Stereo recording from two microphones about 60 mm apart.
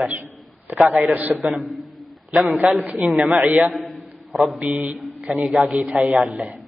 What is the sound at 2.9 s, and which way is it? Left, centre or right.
Speech, right.